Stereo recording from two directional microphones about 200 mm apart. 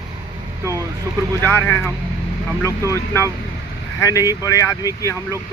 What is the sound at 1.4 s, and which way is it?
Speech, 10° left (ahead or behind).